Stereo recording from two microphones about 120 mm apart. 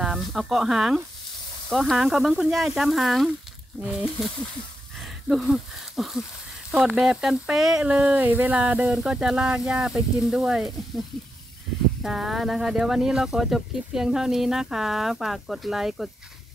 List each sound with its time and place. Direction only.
0.0 s speech: centre (ahead or behind)
5.3 s speech: centre (ahead or behind)
12.0 s speech: 5° right (ahead or behind)